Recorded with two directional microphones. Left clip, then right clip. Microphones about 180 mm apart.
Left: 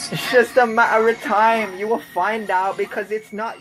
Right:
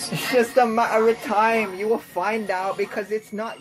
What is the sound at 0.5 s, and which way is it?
Speech, centre (ahead or behind).